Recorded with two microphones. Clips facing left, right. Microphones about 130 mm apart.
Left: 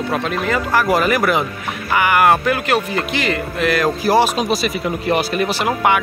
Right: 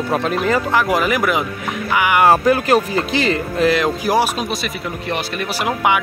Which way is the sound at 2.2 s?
30° right (ahead or behind).